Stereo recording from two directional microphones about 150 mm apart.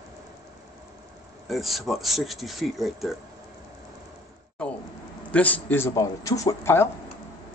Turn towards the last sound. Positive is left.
turn(degrees=20)  # may be behind; listen again after turning